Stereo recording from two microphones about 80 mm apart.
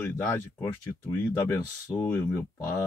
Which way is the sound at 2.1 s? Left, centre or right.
Left.